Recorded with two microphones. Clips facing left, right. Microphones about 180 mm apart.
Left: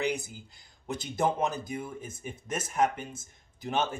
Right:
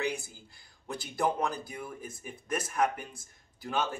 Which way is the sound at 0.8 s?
20° left (ahead or behind).